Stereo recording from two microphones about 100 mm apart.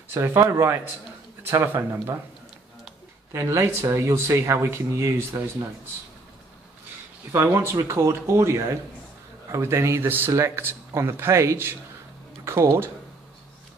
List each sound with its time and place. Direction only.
0.1 s speech: 25° right (ahead or behind)
3.3 s speech: 25° right (ahead or behind)
7.5 s speech: 30° right (ahead or behind)